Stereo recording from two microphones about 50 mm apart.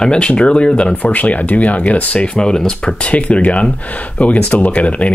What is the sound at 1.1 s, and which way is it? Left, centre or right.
Speech, left.